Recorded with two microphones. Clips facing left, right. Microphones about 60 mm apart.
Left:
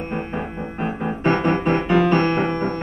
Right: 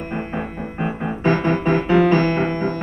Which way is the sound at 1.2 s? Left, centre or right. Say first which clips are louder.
Right 1 dB; left.